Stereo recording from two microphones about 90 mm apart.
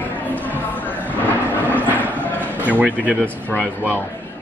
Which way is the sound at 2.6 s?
15° left (ahead or behind).